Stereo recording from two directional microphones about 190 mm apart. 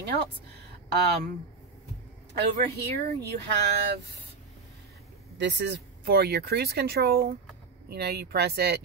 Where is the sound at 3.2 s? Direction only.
60° right (ahead or behind).